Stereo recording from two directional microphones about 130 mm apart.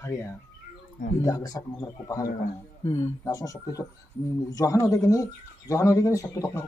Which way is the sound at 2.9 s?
55° left (ahead or behind).